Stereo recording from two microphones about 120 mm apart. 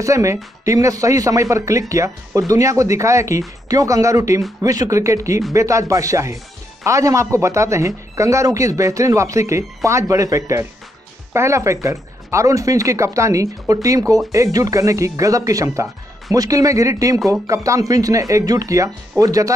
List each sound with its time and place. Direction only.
0.0 s speech: 25° right (ahead or behind)